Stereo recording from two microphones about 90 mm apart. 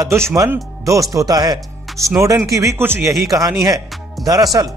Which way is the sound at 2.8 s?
25° right (ahead or behind).